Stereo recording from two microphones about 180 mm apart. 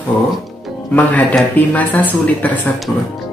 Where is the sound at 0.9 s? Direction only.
10° left (ahead or behind).